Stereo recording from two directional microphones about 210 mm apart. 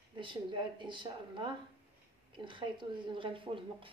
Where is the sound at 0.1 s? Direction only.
25° right (ahead or behind).